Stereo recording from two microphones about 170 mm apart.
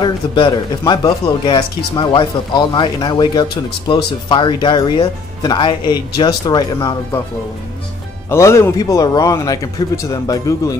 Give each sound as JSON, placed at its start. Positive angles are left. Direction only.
{"t": 0.0, "sound": "speech", "side_deg": 25}
{"t": 8.3, "sound": "speech", "side_deg": 15}